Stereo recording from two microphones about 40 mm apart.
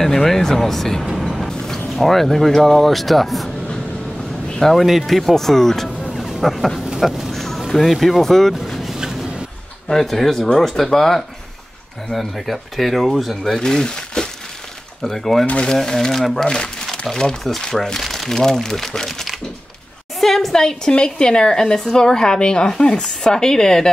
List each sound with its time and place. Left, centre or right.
0.0 s speech: centre
1.1 s vehicle: centre
1.5 s a sound: centre
2.0 s speech: centre
4.6 s speech: centre
6.2 s dog: centre
7.1 s speech: centre
7.3 s a sound: centre
9.8 s speech: centre
13.4 s speech: centre
15.0 s speech: centre
16.4 s a sound: centre
17.4 s a woman's voice: centre
20.6 s speech: left